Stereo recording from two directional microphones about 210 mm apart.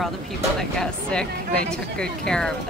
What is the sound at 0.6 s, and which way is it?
Speech, 5° left (ahead or behind).